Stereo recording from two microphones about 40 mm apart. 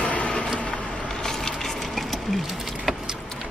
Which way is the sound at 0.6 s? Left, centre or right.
Left.